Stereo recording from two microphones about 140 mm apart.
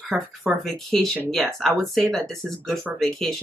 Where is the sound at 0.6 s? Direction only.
Centre (ahead or behind).